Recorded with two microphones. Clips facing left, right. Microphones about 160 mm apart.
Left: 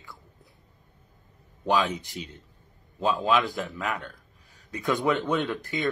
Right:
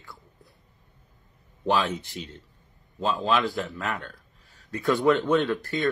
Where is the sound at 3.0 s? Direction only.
15° left (ahead or behind).